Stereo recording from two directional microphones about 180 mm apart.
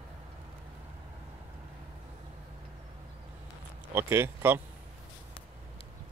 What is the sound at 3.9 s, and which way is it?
Speech, 15° right (ahead or behind).